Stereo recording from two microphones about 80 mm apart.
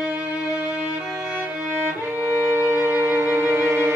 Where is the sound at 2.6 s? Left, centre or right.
Right.